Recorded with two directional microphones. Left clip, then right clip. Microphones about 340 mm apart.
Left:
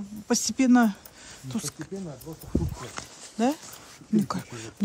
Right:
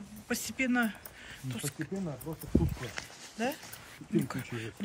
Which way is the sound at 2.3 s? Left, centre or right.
Right.